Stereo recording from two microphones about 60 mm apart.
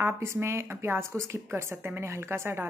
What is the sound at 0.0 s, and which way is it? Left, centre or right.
A woman's voice, right.